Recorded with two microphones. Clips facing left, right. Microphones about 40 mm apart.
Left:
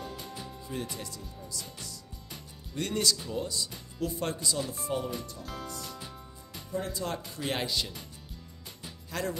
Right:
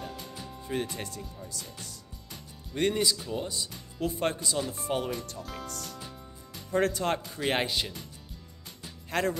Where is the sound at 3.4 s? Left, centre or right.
Right.